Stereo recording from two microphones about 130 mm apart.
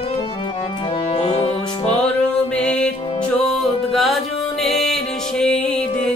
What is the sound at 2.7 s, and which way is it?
Music, 10° left (ahead or behind).